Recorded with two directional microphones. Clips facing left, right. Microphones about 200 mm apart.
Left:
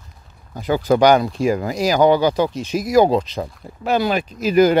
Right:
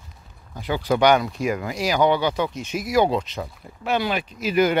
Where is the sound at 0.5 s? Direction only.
45° left (ahead or behind).